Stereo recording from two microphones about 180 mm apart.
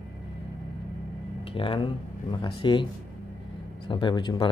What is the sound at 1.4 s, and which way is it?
Speech, 30° left (ahead or behind).